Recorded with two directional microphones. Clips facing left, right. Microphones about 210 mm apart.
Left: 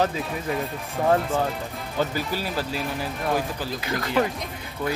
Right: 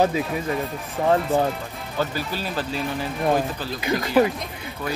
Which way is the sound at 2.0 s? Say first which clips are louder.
Even; 15° left (ahead or behind).